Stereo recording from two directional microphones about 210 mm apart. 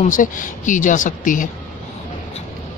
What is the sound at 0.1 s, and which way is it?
Speech, 40° left (ahead or behind).